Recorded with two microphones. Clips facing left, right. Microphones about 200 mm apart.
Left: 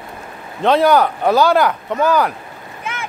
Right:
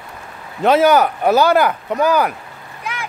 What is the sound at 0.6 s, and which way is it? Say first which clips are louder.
Speech: right 1 dB; 5° right (ahead or behind).